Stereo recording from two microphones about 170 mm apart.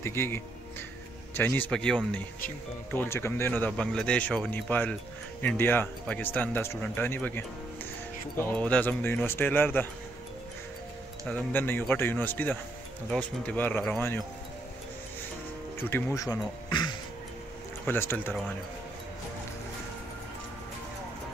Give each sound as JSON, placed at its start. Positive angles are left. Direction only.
{"t": 0.0, "sound": "speech", "side_deg": 15}
{"t": 11.2, "sound": "speech", "side_deg": 10}
{"t": 15.8, "sound": "speech", "side_deg": 15}
{"t": 17.8, "sound": "speech", "side_deg": 10}